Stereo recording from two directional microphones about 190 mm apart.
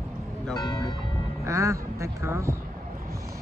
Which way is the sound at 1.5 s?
15° right (ahead or behind).